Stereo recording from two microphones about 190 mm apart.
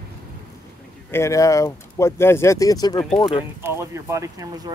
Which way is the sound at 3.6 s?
15° right (ahead or behind).